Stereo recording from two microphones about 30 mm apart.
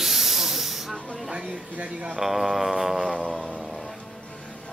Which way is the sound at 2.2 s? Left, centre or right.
Centre.